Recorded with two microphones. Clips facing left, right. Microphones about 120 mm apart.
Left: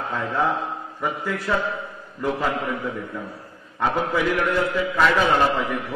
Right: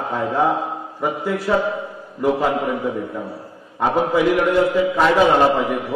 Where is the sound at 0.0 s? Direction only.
25° right (ahead or behind).